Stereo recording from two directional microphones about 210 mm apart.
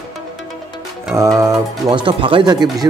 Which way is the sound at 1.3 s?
20° right (ahead or behind).